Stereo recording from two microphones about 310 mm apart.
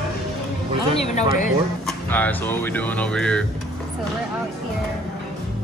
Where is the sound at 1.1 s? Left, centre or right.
Left.